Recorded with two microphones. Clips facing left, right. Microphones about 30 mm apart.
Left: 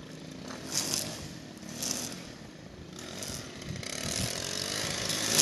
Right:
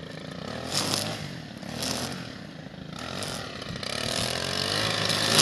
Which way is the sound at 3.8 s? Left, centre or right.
Right.